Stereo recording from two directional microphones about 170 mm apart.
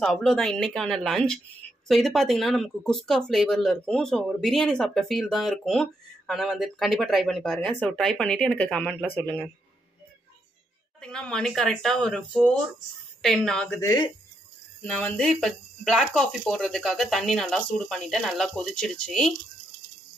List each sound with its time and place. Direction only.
0.0 s speech: centre (ahead or behind)
11.0 s speech: 5° left (ahead or behind)
13.7 s speech: 20° left (ahead or behind)
14.8 s speech: 10° left (ahead or behind)